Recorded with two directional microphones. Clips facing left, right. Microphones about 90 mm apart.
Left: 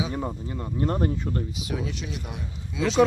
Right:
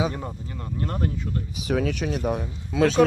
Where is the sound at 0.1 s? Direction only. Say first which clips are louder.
Left 4 dB; 15° left (ahead or behind).